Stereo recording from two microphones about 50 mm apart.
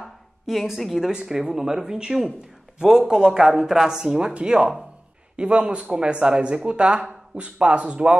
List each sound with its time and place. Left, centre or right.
0.0 s a sound: centre
0.7 s speech: centre
1.1 s speech: centre